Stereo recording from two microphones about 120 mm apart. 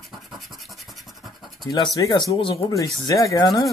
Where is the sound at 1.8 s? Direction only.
35° left (ahead or behind).